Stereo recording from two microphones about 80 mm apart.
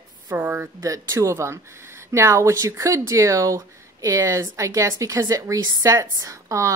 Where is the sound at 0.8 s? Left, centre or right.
Right.